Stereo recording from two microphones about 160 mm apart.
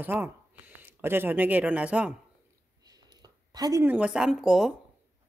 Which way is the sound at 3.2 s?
25° right (ahead or behind).